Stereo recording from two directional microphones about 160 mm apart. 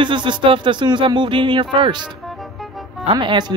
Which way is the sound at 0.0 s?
30° right (ahead or behind).